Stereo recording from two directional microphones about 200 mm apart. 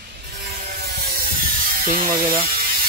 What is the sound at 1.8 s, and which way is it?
Speech, 45° right (ahead or behind).